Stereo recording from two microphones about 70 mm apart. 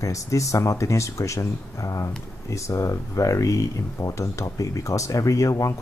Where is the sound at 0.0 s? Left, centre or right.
Left.